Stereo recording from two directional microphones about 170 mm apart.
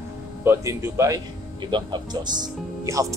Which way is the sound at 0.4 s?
15° right (ahead or behind).